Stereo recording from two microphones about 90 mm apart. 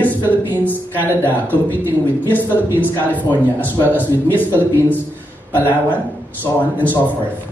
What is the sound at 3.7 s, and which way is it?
Speech, 20° right (ahead or behind).